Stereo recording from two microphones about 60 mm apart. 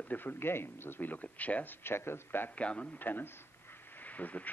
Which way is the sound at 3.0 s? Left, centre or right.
Left.